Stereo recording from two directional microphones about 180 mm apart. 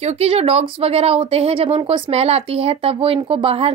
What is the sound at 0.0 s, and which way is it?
Speech, 35° right (ahead or behind).